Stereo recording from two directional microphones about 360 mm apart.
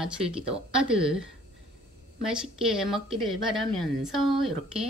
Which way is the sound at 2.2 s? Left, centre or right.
Centre.